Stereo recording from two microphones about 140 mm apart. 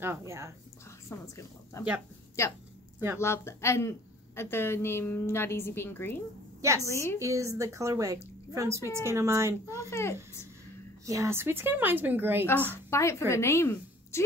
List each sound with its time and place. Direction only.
0.0 s a woman's voice: 20° right (ahead or behind)
1.2 s a woman's voice: 20° left (ahead or behind)
7.2 s a woman's voice: 20° right (ahead or behind)
9.8 s a woman's voice: 20° left (ahead or behind)
11.1 s a woman's voice: 20° right (ahead or behind)
12.4 s a woman's voice: 15° left (ahead or behind)